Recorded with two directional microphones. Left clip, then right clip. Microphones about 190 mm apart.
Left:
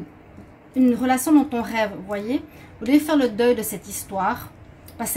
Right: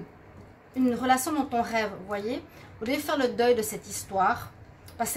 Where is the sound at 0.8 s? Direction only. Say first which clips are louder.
Left 4 dB; 40° right (ahead or behind).